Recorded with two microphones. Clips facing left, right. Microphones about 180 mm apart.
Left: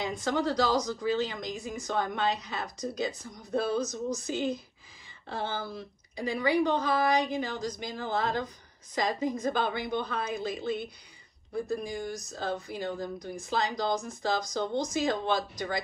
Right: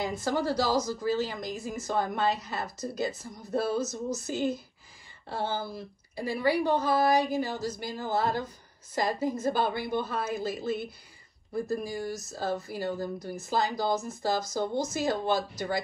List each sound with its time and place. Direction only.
0.0 s speech: 5° right (ahead or behind)